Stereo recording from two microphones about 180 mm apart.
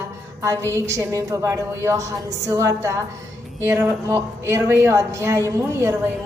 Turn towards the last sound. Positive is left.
turn(degrees=-15)  # may be behind; listen again after turning